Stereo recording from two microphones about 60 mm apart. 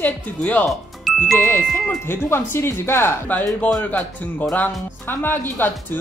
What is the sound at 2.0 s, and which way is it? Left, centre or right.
Speech, left.